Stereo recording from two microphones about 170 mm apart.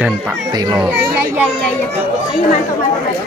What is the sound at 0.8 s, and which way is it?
Speech, 5° right (ahead or behind).